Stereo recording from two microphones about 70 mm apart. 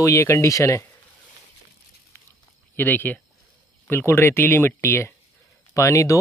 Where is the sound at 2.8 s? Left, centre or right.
Left.